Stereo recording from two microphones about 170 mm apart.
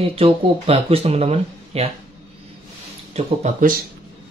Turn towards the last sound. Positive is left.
turn(degrees=-45)  # may be behind; listen again after turning